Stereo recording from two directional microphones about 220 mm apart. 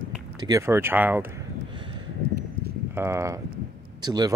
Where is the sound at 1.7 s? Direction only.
20° right (ahead or behind).